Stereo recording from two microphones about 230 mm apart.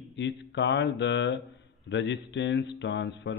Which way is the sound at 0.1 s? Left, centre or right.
Left.